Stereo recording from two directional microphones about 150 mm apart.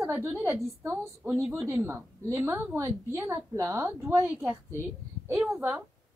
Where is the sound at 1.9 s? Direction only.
20° right (ahead or behind).